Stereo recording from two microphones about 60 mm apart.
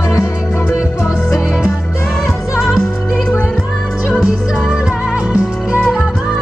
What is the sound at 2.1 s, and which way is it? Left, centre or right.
Music, centre.